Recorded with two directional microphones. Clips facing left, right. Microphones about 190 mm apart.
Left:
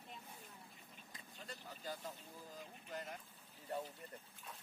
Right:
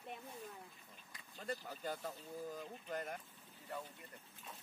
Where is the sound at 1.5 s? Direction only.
65° right (ahead or behind).